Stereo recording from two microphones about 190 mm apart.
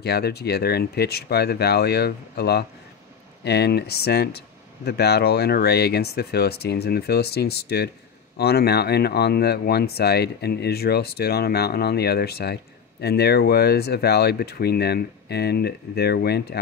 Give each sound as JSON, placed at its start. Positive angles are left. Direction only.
{"t": 0.0, "sound": "speech", "side_deg": 60}